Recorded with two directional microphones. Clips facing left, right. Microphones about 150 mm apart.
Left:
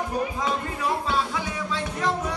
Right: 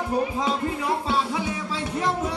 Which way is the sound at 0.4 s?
25° right (ahead or behind).